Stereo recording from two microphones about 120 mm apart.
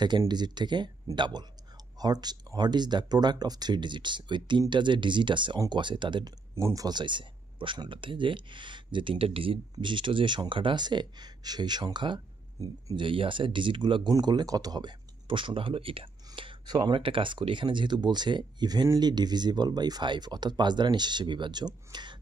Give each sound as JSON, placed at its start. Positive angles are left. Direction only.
{"t": 0.3, "sound": "speech", "side_deg": -35}
{"t": 6.5, "sound": "speech", "side_deg": -25}